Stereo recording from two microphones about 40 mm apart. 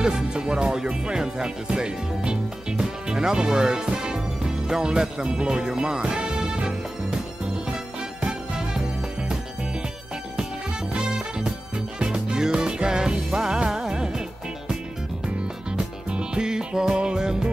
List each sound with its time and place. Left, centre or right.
0.0 s music: centre
10.9 s music: right
15.2 s music: right